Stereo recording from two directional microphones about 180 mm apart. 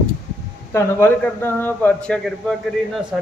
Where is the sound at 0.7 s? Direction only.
10° left (ahead or behind).